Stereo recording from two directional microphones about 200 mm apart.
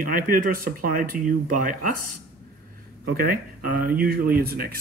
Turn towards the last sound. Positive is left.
turn(degrees=-50)  # may be behind; listen again after turning